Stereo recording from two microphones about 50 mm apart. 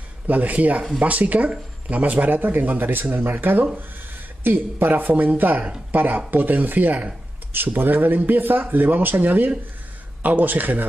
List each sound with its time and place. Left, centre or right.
0.3 s speech: right